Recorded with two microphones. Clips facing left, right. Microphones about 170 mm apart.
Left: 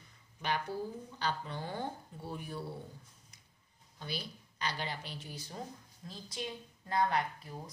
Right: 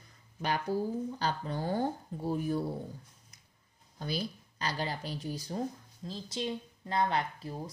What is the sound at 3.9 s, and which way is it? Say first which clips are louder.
Speech: right 7 dB; 40° right (ahead or behind).